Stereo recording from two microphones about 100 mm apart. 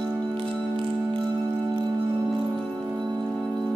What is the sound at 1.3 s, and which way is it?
Music, 25° right (ahead or behind).